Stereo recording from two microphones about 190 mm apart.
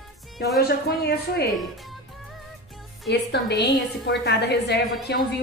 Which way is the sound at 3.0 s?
60° left (ahead or behind).